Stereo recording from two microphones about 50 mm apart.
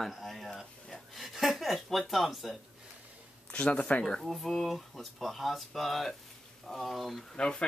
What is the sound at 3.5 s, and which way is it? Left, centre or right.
Speech, left.